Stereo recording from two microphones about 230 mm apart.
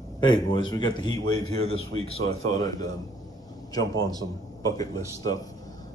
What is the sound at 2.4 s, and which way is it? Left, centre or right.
A man's voice, centre.